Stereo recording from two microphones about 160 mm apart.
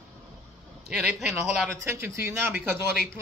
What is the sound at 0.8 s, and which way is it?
Speech, 5° right (ahead or behind).